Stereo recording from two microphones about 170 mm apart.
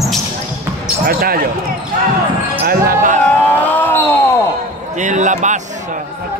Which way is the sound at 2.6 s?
50° right (ahead or behind).